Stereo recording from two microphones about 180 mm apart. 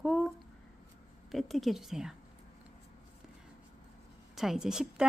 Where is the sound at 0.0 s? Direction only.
Centre (ahead or behind).